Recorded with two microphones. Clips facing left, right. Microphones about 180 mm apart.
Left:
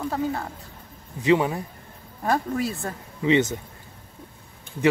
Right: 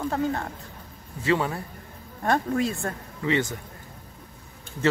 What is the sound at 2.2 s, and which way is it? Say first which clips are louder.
Speech: even; 5° left (ahead or behind).